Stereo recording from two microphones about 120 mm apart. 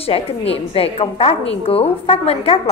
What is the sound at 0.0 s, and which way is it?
A woman's voice, 55° left (ahead or behind).